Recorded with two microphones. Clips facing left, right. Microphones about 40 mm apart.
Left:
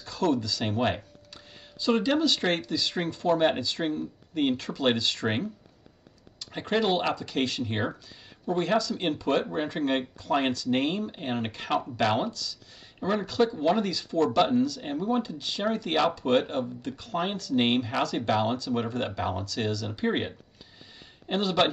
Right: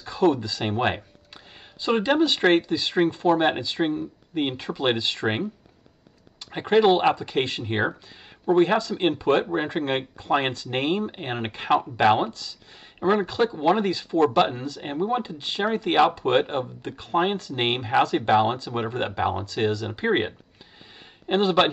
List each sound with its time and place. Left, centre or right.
0.0 s speech: right